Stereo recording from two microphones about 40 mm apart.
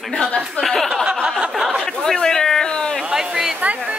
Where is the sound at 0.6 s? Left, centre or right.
Centre.